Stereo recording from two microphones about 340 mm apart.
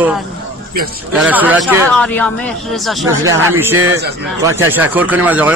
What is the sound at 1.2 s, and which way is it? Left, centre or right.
A man's voice, centre.